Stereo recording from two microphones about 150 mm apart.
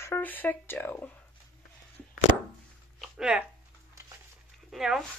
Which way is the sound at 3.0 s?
5° right (ahead or behind).